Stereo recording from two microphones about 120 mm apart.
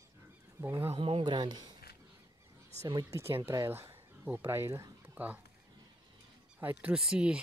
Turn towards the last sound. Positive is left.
turn(degrees=-10)  # may be behind; listen again after turning